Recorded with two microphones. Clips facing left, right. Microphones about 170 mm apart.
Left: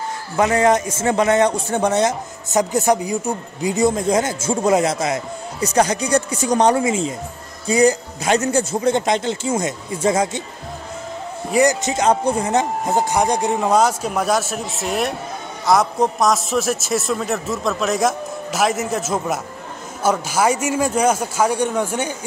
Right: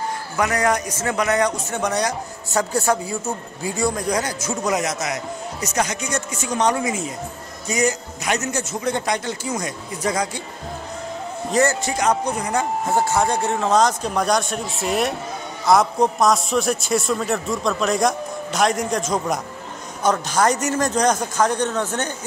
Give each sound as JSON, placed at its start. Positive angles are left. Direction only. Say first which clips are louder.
{"t": 0.4, "sound": "a man's voice", "louder": "left 5 dB", "side_deg": 25}
{"t": 11.5, "sound": "a man's voice", "louder": "left 3 dB", "side_deg": 15}